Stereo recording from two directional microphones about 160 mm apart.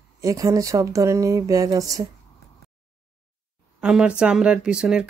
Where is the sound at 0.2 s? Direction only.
20° right (ahead or behind).